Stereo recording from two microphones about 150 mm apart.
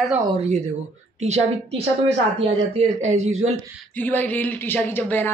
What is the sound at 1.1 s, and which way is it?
Speech, 45° right (ahead or behind).